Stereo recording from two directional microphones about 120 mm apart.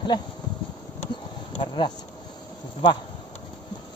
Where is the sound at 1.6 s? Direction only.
40° left (ahead or behind).